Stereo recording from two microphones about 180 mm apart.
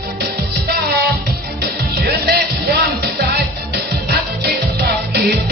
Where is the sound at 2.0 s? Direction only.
60° right (ahead or behind).